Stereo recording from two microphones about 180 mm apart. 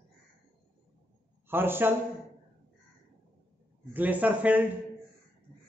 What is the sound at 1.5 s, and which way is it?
Speech, 10° right (ahead or behind).